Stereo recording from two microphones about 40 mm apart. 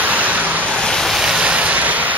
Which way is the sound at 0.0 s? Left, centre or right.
Right.